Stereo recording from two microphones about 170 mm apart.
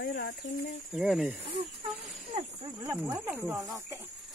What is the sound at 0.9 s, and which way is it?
Speech, 5° right (ahead or behind).